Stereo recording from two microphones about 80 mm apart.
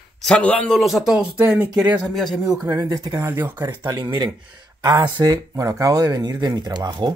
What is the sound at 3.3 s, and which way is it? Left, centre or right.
Speech, right.